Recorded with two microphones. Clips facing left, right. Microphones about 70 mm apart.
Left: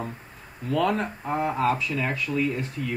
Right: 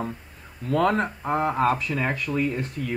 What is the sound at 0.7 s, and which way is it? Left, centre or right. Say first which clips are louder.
Speech: right 2 dB; right.